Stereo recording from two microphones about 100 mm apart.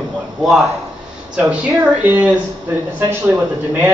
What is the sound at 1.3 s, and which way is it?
A man's voice, 15° right (ahead or behind).